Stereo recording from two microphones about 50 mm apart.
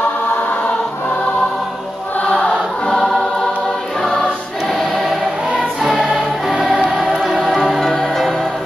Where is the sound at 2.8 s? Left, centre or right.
Centre.